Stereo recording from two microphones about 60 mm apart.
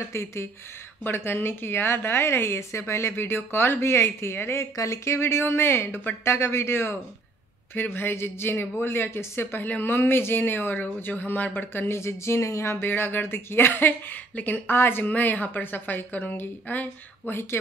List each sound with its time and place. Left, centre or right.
0.1 s speech: left
4.7 s speech: left
17.3 s speech: left